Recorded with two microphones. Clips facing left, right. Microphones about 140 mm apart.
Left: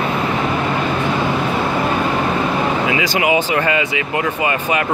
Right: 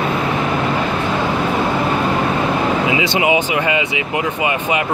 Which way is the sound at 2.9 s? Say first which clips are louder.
Right 1 dB; 25° right (ahead or behind).